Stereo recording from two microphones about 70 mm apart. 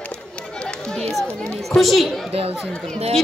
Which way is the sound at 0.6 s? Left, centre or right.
Centre.